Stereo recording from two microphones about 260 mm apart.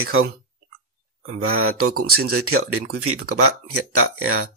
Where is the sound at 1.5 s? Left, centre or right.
Right.